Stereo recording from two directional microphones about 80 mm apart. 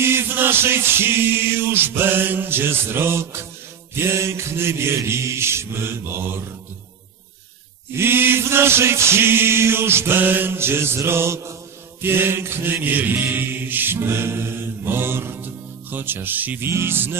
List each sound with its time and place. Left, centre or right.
0.0 s mantra: right
3.9 s chant: right
7.9 s chant: right
12.0 s mantra: right